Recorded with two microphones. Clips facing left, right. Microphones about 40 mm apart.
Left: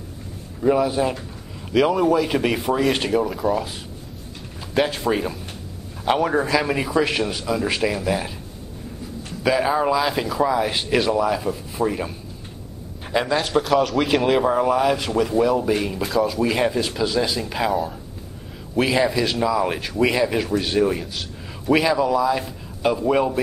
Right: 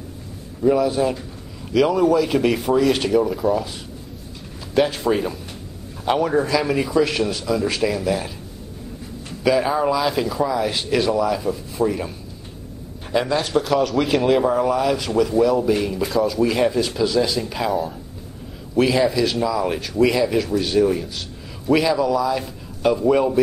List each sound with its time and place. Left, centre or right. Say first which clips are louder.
0.6 s speech: right 1 dB; centre
4.7 s a man's voice: right 2 dB; centre
9.4 s speech: right 1 dB; centre
10.4 s a man's voice: left 4 dB; centre
18.9 s a man's voice: right 1 dB; centre